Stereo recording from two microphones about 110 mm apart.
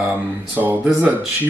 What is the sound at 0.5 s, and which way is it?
Speech, 15° right (ahead or behind).